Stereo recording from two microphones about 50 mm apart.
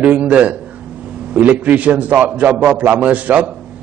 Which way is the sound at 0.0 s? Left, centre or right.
Right.